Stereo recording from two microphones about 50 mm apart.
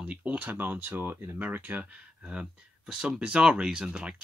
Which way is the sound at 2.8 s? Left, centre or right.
Centre.